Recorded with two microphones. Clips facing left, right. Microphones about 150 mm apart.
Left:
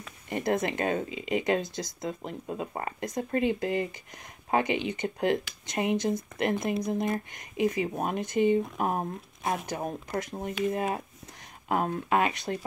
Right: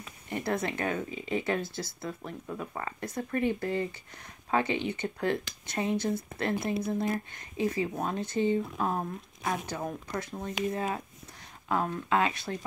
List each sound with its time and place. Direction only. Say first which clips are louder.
0.3 s speech: left 3 dB; 20° left (ahead or behind)
12.1 s speech: left 1 dB; 15° left (ahead or behind)